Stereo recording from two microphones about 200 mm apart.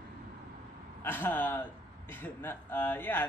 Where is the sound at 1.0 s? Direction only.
10° left (ahead or behind).